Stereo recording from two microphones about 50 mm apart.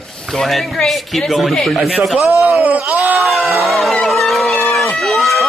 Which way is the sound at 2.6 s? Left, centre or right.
Right.